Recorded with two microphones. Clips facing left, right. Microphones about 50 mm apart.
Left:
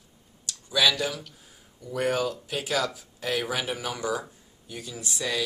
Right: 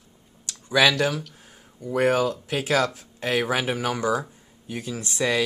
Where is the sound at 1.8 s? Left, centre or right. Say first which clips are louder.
Right 5 dB; right.